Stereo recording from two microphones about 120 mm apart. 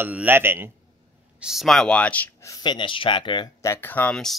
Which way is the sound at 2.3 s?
25° left (ahead or behind).